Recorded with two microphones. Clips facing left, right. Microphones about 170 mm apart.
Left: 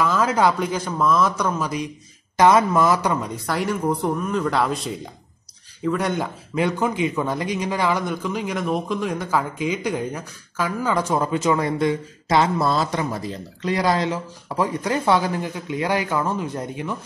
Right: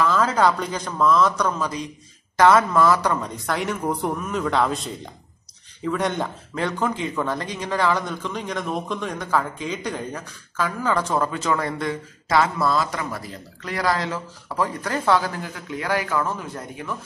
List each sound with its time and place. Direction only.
0.0 s a man's voice: 10° left (ahead or behind)